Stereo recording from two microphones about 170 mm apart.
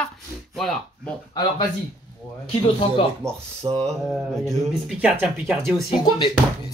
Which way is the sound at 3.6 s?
25° right (ahead or behind).